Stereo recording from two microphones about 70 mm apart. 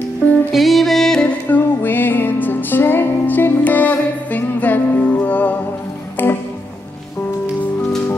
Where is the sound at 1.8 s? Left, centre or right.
Left.